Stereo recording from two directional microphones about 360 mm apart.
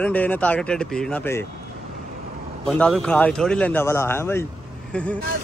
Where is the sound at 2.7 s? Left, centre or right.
Centre.